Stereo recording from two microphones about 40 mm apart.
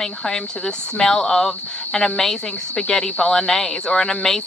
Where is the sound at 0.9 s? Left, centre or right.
Centre.